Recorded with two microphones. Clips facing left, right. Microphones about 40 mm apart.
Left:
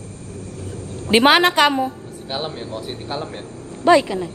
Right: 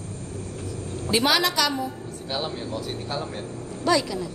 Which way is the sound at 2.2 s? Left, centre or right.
Left.